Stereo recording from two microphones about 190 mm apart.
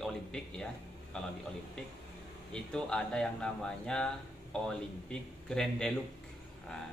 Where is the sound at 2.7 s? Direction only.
5° left (ahead or behind).